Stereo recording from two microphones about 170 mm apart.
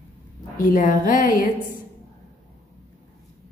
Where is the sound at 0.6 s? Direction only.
50° left (ahead or behind).